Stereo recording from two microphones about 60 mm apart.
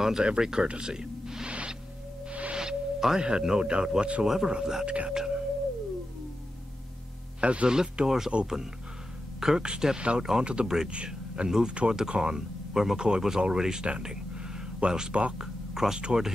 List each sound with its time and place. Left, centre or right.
0.0 s speech: centre
2.3 s music: right
2.6 s speech: centre
7.3 s speech: centre
9.4 s speech: centre